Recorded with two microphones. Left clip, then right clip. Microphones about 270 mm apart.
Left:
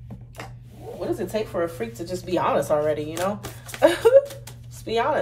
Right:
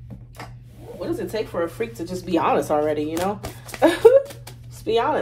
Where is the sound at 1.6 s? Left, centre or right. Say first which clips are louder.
Right 2 dB; centre.